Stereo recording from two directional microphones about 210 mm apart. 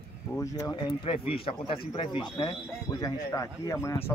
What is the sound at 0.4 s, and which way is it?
Speech, 15° left (ahead or behind).